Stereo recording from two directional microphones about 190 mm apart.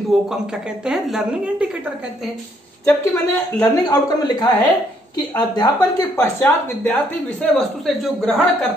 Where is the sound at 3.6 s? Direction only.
20° left (ahead or behind).